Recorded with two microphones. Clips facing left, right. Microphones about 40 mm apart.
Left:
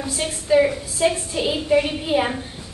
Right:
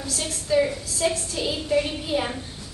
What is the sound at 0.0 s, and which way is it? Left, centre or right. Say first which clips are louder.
A woman's voice: left 4 dB; left.